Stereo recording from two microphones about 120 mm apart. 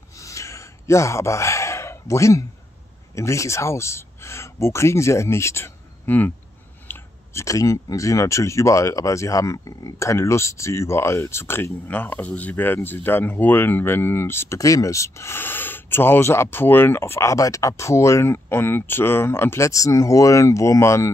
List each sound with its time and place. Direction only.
0.2 s gasp: 25° left (ahead or behind)
3.2 s speech: 25° left (ahead or behind)